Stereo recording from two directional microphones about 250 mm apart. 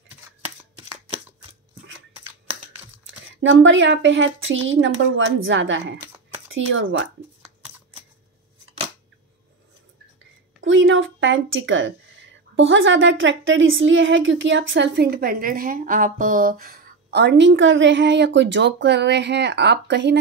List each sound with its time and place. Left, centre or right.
0.7 s shuffling cards: right
3.4 s a woman's voice: right
10.6 s a woman's voice: right